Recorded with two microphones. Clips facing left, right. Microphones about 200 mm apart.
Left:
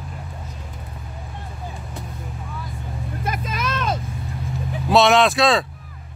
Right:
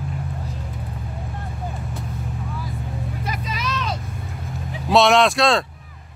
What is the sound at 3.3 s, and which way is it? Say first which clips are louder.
Vehicle: left 3 dB; 50° left (ahead or behind).